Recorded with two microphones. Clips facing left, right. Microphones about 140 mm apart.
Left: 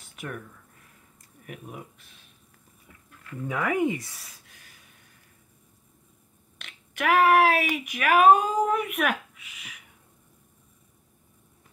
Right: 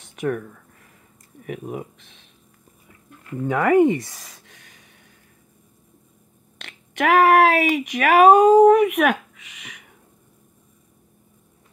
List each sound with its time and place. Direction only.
0.1 s speech: 50° right (ahead or behind)
3.3 s speech: 70° right (ahead or behind)
4.2 s a sound: 80° right
6.6 s speech: 75° right (ahead or behind)